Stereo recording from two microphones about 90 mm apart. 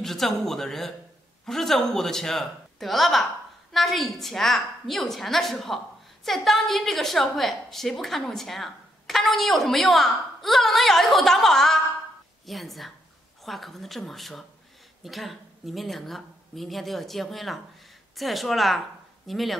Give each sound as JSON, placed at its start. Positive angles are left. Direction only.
{"t": 0.0, "sound": "a woman's voice", "side_deg": 5}